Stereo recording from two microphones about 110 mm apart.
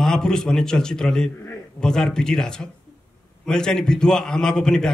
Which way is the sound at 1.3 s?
25° left (ahead or behind).